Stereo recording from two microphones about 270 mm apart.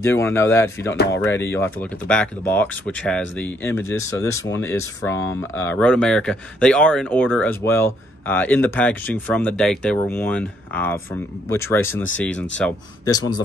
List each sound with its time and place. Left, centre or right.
0.0 s speech: centre